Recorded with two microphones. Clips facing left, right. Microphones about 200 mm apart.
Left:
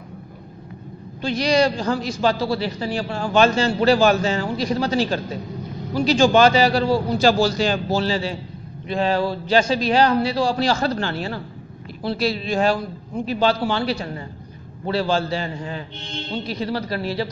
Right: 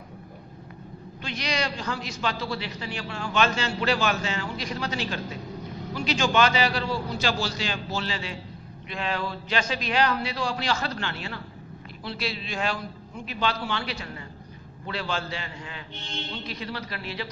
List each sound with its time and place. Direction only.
1.2 s a man's voice: 35° left (ahead or behind)